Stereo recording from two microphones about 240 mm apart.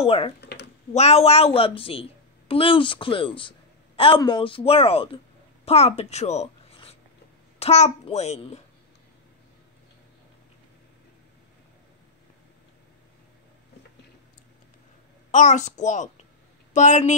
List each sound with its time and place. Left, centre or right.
0.0 s a woman's voice: left
0.4 s a sound: left
0.9 s a woman's voice: left
15.3 s a child's voice: left